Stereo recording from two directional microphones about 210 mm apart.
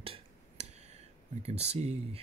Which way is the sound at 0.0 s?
30° right (ahead or behind).